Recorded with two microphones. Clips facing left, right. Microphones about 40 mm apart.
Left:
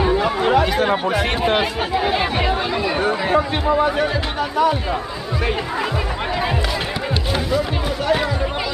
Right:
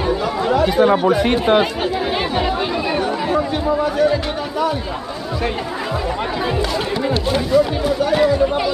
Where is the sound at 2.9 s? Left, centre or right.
Left.